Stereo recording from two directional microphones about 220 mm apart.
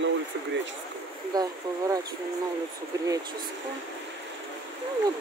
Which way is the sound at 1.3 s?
15° right (ahead or behind).